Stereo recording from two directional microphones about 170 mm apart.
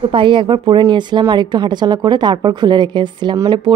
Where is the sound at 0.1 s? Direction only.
30° right (ahead or behind).